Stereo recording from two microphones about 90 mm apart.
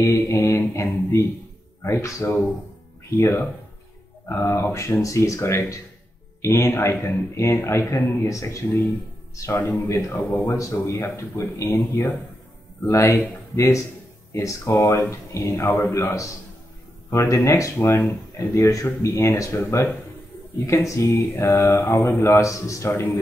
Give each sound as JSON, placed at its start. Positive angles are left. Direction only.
{"t": 0.0, "sound": "speech", "side_deg": 35}
{"t": 3.2, "sound": "speech", "side_deg": 25}
{"t": 9.6, "sound": "speech", "side_deg": 20}
{"t": 13.1, "sound": "speech", "side_deg": 25}
{"t": 14.3, "sound": "speech", "side_deg": 35}
{"t": 17.5, "sound": "speech", "side_deg": 35}
{"t": 17.7, "sound": "speech", "side_deg": 25}
{"t": 20.8, "sound": "speech", "side_deg": 30}